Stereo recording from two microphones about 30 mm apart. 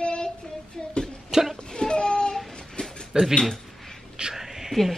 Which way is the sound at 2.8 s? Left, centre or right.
Left.